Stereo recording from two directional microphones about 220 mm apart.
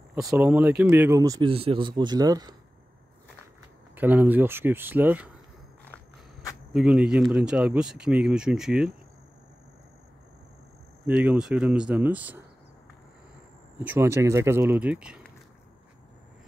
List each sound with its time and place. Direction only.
0.1 s speech: 10° right (ahead or behind)
3.9 s speech: 10° right (ahead or behind)
6.7 s speech: 5° right (ahead or behind)
11.1 s speech: 5° right (ahead or behind)
13.8 s speech: 10° right (ahead or behind)